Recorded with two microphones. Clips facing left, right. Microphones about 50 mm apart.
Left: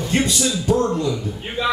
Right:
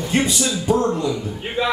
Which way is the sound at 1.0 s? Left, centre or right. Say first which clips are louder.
Even; right.